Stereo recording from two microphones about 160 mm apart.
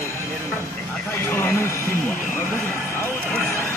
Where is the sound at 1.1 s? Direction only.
10° left (ahead or behind).